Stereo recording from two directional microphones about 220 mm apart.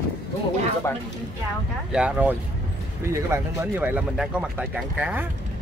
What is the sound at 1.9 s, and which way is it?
Speech, 5° right (ahead or behind).